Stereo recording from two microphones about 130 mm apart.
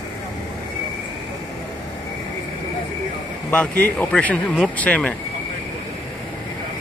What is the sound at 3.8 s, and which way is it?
Speech, 10° left (ahead or behind).